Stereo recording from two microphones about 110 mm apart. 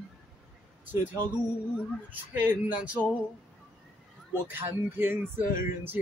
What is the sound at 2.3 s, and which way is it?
Speech, 15° right (ahead or behind).